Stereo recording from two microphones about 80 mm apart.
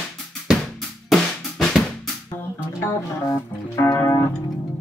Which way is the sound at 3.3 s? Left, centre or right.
Left.